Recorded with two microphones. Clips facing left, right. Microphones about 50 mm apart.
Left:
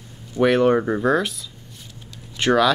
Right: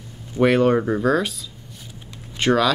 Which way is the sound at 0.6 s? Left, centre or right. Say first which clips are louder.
Even; centre.